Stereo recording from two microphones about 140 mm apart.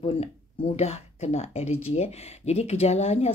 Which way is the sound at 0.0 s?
45° left (ahead or behind).